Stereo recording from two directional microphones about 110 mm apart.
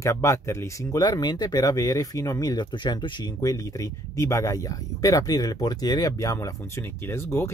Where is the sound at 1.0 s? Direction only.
40° left (ahead or behind).